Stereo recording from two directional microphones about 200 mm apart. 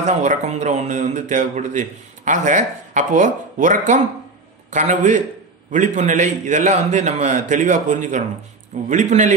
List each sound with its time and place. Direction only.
0.0 s speech: 35° right (ahead or behind)